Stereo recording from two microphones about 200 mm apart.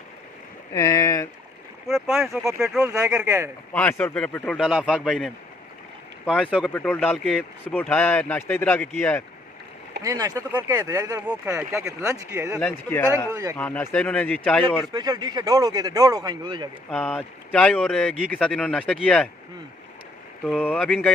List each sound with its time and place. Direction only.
0.7 s speech: 15° left (ahead or behind)
1.9 s speech: centre (ahead or behind)
3.7 s speech: 5° left (ahead or behind)
10.0 s speech: 15° right (ahead or behind)
12.5 s speech: 5° left (ahead or behind)
13.3 s speech: 15° right (ahead or behind)
13.6 s speech: 10° left (ahead or behind)
14.9 s speech: 20° right (ahead or behind)
16.9 s speech: 5° left (ahead or behind)
20.4 s speech: 5° left (ahead or behind)